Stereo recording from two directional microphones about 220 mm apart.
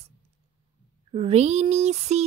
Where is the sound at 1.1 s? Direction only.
25° right (ahead or behind).